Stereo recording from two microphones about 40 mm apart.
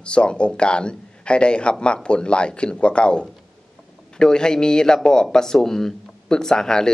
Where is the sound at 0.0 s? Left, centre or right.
Left.